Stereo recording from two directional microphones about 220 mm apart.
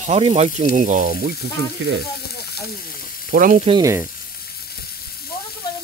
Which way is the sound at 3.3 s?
40° right (ahead or behind).